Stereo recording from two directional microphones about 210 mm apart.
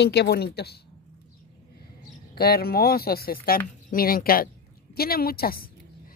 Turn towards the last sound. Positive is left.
turn(degrees=45)  # may be behind; listen again after turning